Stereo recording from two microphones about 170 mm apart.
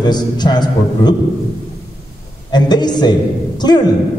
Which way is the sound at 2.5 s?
25° left (ahead or behind).